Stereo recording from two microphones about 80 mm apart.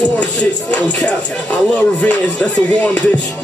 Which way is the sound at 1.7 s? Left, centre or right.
Centre.